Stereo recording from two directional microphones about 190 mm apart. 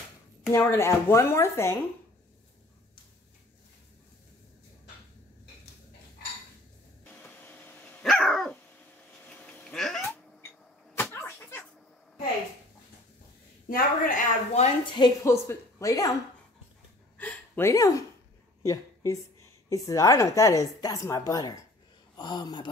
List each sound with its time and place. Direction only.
0.5 s a woman's voice: 15° left (ahead or behind)
7.1 s dog: 10° left (ahead or behind)
11.0 s a sound: 10° left (ahead or behind)
13.7 s a woman's voice: 45° left (ahead or behind)
15.0 s a woman's voice: 20° left (ahead or behind)
17.2 s a sound: 10° left (ahead or behind)
19.7 s a woman's voice: 20° left (ahead or behind)